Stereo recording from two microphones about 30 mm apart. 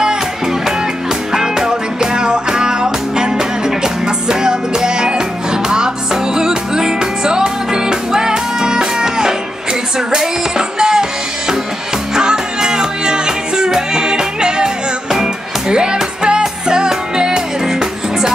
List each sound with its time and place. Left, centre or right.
0.0 s music: right